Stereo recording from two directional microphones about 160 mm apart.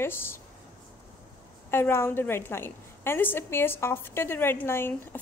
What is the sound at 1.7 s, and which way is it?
A woman's voice, 15° left (ahead or behind).